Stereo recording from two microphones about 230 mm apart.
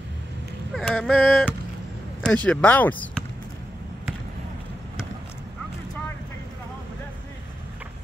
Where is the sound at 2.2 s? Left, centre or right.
Centre.